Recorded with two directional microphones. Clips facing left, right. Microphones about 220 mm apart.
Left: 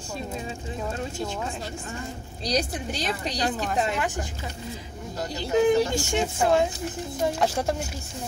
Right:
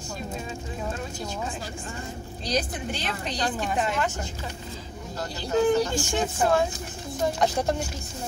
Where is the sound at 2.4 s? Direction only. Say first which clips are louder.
Left 1 dB; 35° left (ahead or behind).